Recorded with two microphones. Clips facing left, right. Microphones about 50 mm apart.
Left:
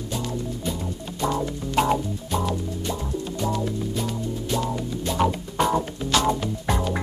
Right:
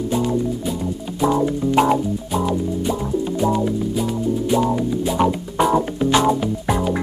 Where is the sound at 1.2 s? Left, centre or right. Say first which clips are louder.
Right 8 dB; centre.